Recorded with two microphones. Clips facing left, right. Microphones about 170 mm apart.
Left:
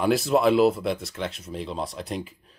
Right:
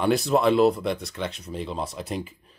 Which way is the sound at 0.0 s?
Centre (ahead or behind).